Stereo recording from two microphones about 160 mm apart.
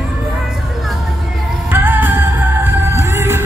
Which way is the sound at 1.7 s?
10° right (ahead or behind).